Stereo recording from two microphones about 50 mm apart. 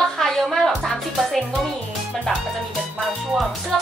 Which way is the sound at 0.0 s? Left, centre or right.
Centre.